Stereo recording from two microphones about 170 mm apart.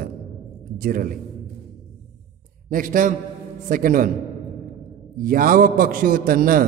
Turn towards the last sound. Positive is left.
turn(degrees=-55)  # may be behind; listen again after turning